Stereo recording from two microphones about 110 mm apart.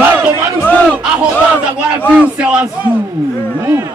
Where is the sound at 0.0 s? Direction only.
15° right (ahead or behind).